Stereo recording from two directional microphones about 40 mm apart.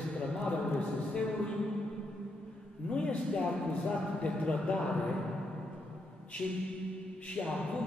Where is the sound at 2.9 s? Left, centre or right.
Left.